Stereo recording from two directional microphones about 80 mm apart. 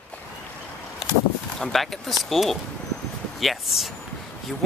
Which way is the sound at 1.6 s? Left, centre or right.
Centre.